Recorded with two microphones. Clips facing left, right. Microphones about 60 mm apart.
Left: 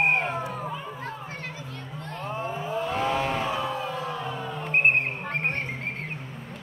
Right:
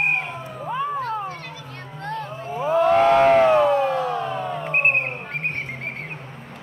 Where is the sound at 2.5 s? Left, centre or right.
Right.